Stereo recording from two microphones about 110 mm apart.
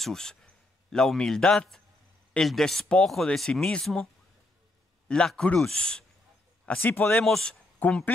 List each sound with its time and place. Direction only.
0.0 s a man's voice: 5° left (ahead or behind)
7.2 s speech: 5° left (ahead or behind)
7.8 s speech: 15° left (ahead or behind)